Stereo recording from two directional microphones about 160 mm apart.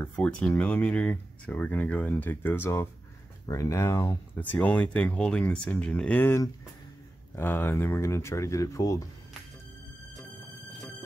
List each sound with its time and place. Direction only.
0.0 s speech: 5° left (ahead or behind)
4.4 s speech: 10° left (ahead or behind)